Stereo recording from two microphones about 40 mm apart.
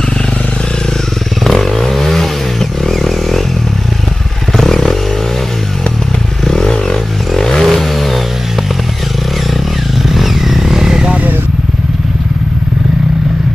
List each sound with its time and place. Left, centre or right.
1.4 s vehicle: centre
4.6 s motorcycle: centre
6.4 s vehicle: centre
10.0 s motorcycle: centre